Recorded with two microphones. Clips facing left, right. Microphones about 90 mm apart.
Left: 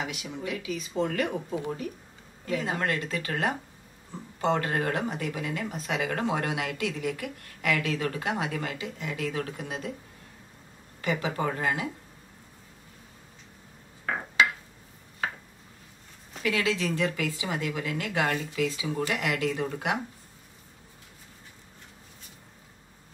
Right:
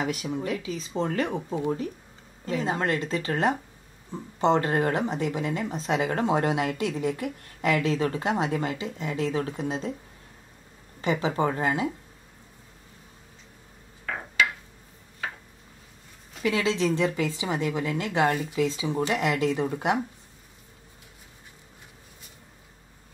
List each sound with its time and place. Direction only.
0.0 s speech: 40° right (ahead or behind)
11.0 s speech: 25° right (ahead or behind)
16.4 s speech: 25° right (ahead or behind)